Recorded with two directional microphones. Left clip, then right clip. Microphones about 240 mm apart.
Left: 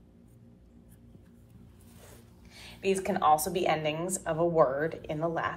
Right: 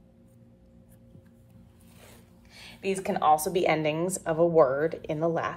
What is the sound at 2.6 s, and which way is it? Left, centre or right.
A woman's voice, right.